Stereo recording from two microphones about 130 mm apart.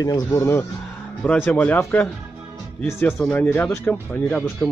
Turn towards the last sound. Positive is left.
turn(degrees=15)  # may be behind; listen again after turning